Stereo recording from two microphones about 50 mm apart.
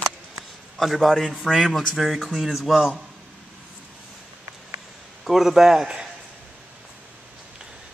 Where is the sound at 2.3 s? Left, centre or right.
Centre.